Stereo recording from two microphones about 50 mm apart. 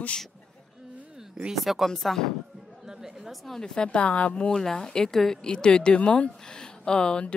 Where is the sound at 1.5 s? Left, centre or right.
Centre.